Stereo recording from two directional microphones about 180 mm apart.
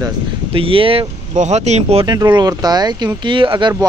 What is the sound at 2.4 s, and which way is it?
Speech, 20° right (ahead or behind).